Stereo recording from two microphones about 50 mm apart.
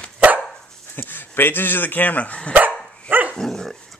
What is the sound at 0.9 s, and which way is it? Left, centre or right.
Speech, left.